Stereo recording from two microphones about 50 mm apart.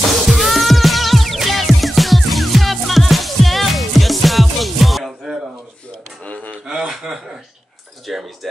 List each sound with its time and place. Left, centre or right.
0.3 s music: centre
6.2 s gasp: left
6.7 s chuckle: centre
8.1 s speech: centre